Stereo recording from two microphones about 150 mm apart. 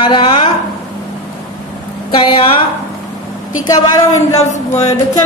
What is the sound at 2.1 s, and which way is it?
Speech, 35° left (ahead or behind).